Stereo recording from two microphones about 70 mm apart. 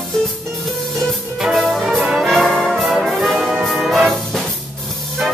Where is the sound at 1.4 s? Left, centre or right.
Centre.